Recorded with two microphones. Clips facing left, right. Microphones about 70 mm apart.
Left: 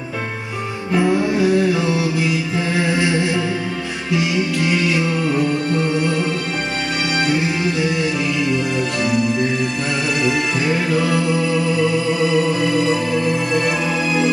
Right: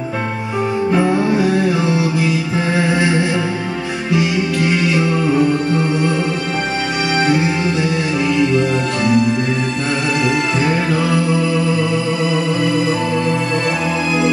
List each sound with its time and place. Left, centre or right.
0.9 s music: right